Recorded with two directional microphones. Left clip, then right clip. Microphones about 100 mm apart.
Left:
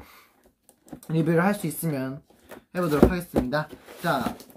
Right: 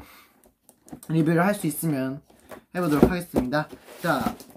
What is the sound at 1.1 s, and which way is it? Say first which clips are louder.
Speech: right 1 dB; centre (ahead or behind).